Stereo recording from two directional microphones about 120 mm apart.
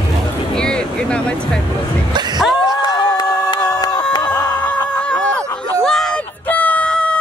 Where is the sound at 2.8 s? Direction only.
35° left (ahead or behind).